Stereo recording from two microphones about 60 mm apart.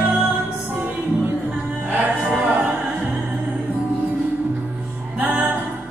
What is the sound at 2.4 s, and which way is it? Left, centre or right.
A capella, right.